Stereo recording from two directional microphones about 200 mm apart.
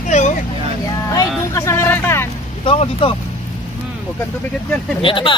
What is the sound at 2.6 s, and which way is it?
Speech, 25° left (ahead or behind).